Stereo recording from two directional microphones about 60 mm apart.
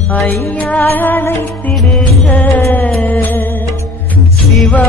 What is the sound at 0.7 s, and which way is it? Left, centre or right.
Music, left.